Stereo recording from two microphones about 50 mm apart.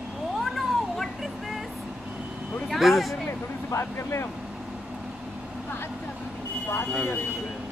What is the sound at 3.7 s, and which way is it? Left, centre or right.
Speech, left.